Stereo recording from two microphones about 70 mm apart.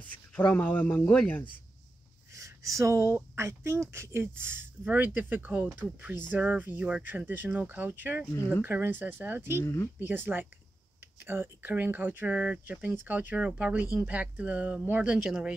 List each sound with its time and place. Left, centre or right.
0.4 s speech: left
2.3 s a sound: right
3.3 s speech: right
8.4 s speech: left
8.6 s speech: right
9.6 s speech: left
9.9 s speech: right; by 15.5 s centre